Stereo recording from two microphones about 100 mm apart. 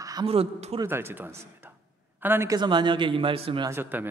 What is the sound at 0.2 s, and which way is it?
Speech, 75° right (ahead or behind).